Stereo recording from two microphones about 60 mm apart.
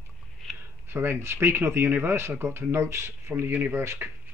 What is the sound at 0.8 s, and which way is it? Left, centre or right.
Speech, right.